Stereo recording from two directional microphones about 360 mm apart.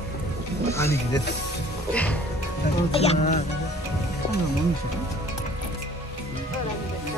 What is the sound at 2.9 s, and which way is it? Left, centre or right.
Speech, centre.